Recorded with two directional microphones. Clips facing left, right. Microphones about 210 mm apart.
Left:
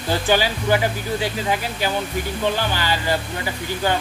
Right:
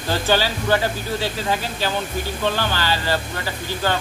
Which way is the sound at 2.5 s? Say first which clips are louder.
Even; 15° left (ahead or behind).